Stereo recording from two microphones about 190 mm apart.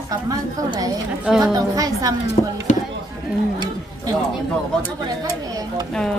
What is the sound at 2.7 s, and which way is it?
Speech, 40° left (ahead or behind).